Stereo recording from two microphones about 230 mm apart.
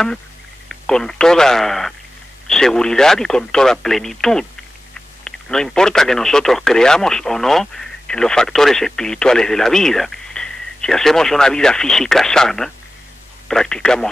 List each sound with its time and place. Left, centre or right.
0.7 s speech: centre